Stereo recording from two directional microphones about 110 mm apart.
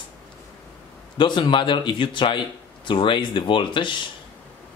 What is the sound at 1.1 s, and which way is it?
Speech, 45° left (ahead or behind).